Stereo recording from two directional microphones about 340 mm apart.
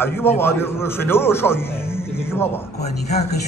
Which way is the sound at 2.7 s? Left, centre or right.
Centre.